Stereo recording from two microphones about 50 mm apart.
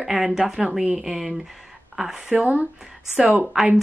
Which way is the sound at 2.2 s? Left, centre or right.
Right.